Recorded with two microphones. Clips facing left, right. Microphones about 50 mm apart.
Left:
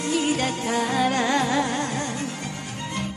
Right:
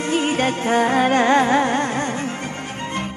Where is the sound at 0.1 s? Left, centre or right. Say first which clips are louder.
Right 4 dB; right.